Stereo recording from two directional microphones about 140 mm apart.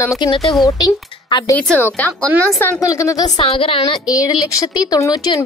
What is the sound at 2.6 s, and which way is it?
Speech, 20° left (ahead or behind).